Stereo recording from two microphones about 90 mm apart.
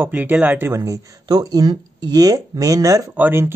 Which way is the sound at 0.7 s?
35° right (ahead or behind).